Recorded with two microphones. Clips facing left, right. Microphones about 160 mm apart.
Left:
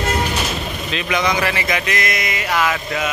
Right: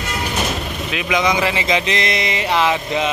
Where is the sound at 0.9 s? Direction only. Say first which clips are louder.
Right 2 dB; 15° right (ahead or behind).